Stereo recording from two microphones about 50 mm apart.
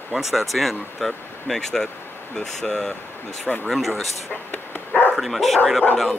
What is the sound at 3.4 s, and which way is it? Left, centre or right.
Speech, left.